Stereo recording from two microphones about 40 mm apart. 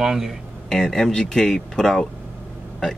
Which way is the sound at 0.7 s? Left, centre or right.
Centre.